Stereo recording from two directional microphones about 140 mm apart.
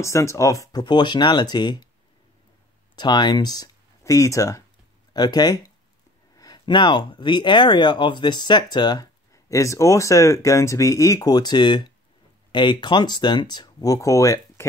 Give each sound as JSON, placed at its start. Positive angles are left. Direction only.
{"t": 0.0, "sound": "speech", "side_deg": 20}
{"t": 3.0, "sound": "speech", "side_deg": 30}